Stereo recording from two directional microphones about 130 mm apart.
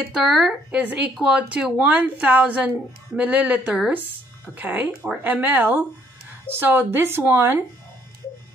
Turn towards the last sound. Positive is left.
turn(degrees=-15)  # may be behind; listen again after turning